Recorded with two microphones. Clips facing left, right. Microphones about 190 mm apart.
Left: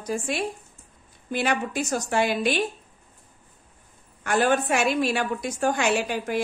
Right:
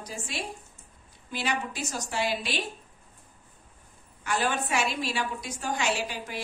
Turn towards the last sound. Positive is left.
turn(degrees=55)  # may be behind; listen again after turning